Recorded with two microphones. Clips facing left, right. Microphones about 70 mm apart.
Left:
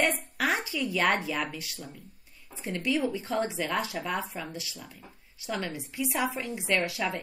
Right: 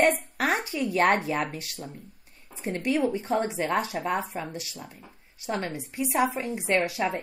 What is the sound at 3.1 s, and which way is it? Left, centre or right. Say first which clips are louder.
A woman's voice: right 3 dB; right.